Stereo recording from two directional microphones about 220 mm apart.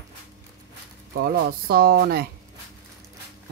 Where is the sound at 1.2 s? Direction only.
45° right (ahead or behind).